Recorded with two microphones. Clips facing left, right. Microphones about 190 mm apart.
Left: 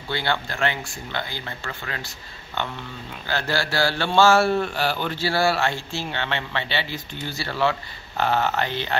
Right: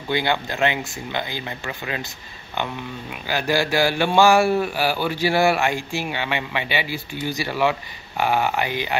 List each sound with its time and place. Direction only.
0.1 s speech: 15° right (ahead or behind)